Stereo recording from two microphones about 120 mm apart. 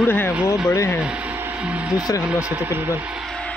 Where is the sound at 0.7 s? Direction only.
25° left (ahead or behind).